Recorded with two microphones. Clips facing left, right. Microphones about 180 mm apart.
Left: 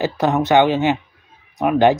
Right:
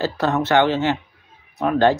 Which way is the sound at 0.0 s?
15° left (ahead or behind).